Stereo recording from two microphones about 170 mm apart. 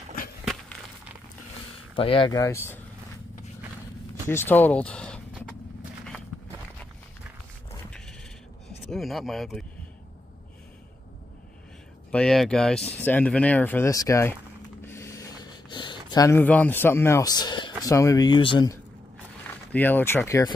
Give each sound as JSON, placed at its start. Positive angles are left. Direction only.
{"t": 2.0, "sound": "speech", "side_deg": 30}
{"t": 4.3, "sound": "speech", "side_deg": 15}
{"t": 8.9, "sound": "speech", "side_deg": 0}
{"t": 12.1, "sound": "speech", "side_deg": 5}
{"t": 14.9, "sound": "a sound", "side_deg": 15}
{"t": 17.8, "sound": "speech", "side_deg": 20}
{"t": 19.7, "sound": "speech", "side_deg": 10}